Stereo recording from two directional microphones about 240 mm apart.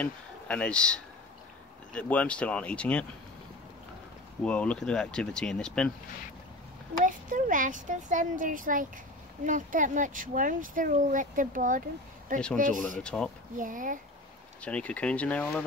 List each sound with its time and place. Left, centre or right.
0.0 s speech: centre
4.5 s speech: centre
7.1 s speech: right
13.0 s speech: centre
13.6 s speech: right
14.6 s speech: centre